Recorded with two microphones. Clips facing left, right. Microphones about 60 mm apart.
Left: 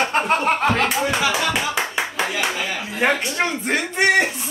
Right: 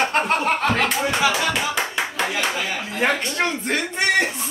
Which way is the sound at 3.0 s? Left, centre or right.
Centre.